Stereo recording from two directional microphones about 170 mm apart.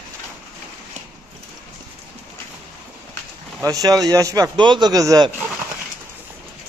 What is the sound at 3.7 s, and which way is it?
Speech, 20° right (ahead or behind).